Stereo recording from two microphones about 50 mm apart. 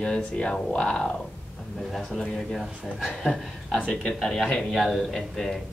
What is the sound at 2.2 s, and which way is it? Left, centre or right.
Speech, centre.